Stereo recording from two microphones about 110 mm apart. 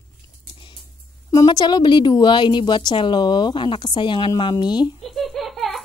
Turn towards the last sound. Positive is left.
turn(degrees=0)  # may be behind; listen again after turning